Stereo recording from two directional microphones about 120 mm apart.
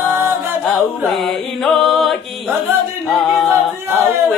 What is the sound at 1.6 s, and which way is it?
Music, 5° left (ahead or behind).